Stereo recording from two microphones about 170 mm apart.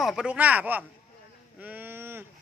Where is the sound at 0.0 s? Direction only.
5° right (ahead or behind).